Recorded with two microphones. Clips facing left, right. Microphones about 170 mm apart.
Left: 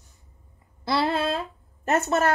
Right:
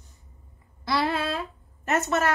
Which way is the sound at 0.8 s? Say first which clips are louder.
Left 2 dB; 30° left (ahead or behind).